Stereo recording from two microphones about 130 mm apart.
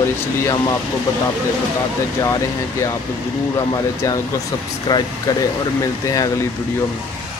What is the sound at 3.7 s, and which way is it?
Speech, 25° left (ahead or behind).